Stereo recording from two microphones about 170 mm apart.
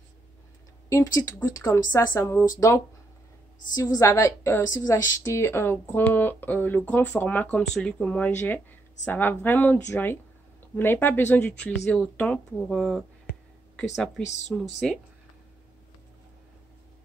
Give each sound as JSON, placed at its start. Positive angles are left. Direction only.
{"t": 0.8, "sound": "a woman's voice", "side_deg": 20}
{"t": 3.7, "sound": "a woman's voice", "side_deg": 20}
{"t": 10.8, "sound": "a woman's voice", "side_deg": 10}
{"t": 14.2, "sound": "speech", "side_deg": 40}
{"t": 14.5, "sound": "speech", "side_deg": 0}